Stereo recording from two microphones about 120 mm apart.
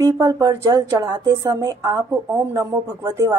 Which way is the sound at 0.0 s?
25° right (ahead or behind).